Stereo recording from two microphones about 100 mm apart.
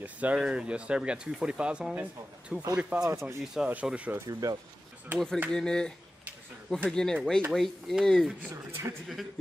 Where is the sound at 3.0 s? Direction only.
30° right (ahead or behind).